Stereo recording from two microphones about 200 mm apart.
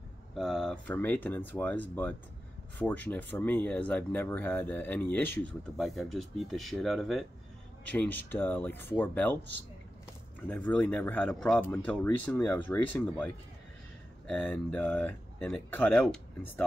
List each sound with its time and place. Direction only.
0.4 s speech: centre (ahead or behind)
10.5 s speech: 5° left (ahead or behind)